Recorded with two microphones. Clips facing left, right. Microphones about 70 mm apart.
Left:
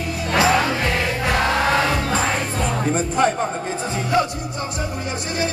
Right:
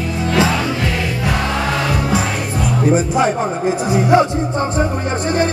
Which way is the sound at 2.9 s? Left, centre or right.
Centre.